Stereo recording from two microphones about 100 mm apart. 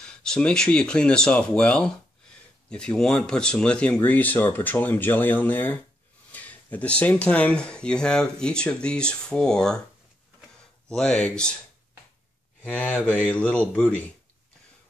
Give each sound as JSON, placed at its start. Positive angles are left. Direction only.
{"t": 0.0, "sound": "speech", "side_deg": 5}
{"t": 10.9, "sound": "speech", "side_deg": 10}
{"t": 12.6, "sound": "speech", "side_deg": 15}